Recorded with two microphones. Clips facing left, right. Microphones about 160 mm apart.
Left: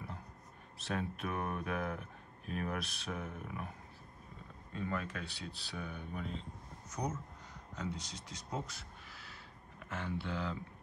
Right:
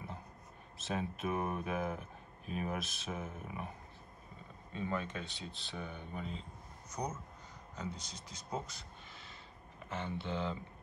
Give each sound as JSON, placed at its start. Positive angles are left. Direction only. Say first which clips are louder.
{"t": 0.7, "sound": "speech", "louder": "even", "side_deg": 0}
{"t": 4.7, "sound": "speech", "louder": "right 1 dB", "side_deg": 0}
{"t": 9.8, "sound": "speech", "louder": "even", "side_deg": 0}